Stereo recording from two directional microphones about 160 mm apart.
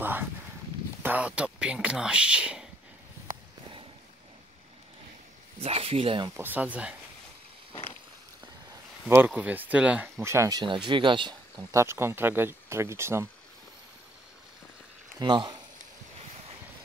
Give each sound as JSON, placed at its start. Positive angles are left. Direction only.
{"t": 0.0, "sound": "a sound", "side_deg": -10}
{"t": 1.0, "sound": "a man's voice", "side_deg": -10}
{"t": 3.3, "sound": "walk", "side_deg": -60}
{"t": 5.6, "sound": "speech", "side_deg": -35}
{"t": 6.3, "sound": "speech", "side_deg": -10}
{"t": 9.1, "sound": "speech", "side_deg": -10}
{"t": 10.6, "sound": "speech", "side_deg": -30}
{"t": 11.7, "sound": "speech", "side_deg": -15}
{"t": 15.1, "sound": "speech", "side_deg": -25}